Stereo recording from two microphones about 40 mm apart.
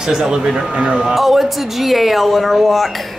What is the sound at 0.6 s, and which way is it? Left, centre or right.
Speech, right.